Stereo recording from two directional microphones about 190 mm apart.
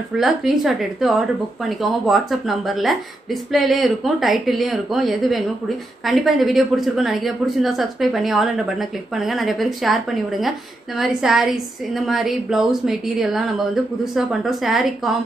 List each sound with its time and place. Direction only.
0.2 s a woman's voice: centre (ahead or behind)